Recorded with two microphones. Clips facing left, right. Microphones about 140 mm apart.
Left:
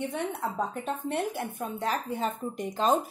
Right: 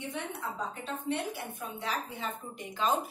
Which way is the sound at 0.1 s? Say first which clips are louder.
Left 6 dB; 50° left (ahead or behind).